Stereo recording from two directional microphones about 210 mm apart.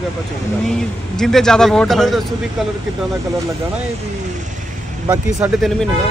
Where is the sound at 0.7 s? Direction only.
Centre (ahead or behind).